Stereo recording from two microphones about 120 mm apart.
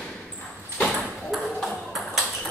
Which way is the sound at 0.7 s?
10° left (ahead or behind).